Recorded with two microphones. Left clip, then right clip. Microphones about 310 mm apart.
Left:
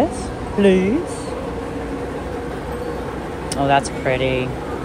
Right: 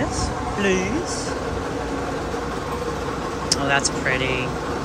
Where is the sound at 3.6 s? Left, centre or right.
Centre.